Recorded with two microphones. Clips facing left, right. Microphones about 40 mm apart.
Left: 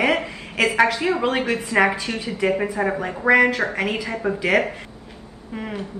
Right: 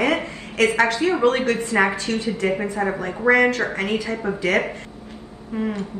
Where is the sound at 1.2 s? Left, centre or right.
Centre.